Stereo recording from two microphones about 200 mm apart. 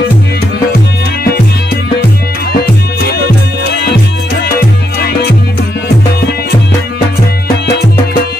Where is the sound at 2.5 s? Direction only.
50° left (ahead or behind).